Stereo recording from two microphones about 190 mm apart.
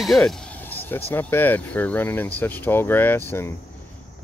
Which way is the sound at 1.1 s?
10° left (ahead or behind).